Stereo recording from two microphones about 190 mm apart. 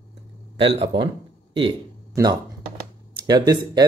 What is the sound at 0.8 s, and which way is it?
Speech, 25° right (ahead or behind).